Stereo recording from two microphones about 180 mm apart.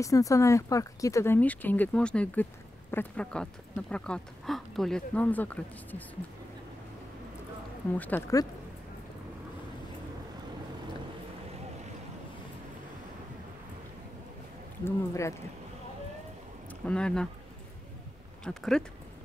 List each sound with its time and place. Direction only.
0.0 s speech: 20° left (ahead or behind)
8.0 s speech: 10° left (ahead or behind)
14.9 s speech: 15° left (ahead or behind)
16.8 s speech: 5° left (ahead or behind)
18.4 s speech: 5° left (ahead or behind)